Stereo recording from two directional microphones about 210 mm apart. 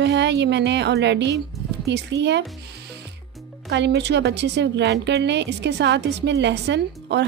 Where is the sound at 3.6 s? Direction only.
55° right (ahead or behind).